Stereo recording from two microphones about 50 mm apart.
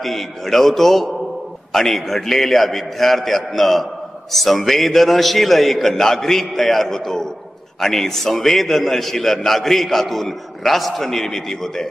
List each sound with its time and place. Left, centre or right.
0.0 s a man's voice: centre